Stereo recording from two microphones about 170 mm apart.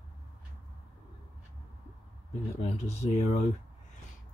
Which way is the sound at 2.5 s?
40° left (ahead or behind).